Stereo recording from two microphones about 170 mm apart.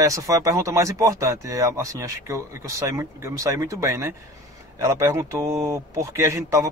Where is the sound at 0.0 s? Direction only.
20° right (ahead or behind).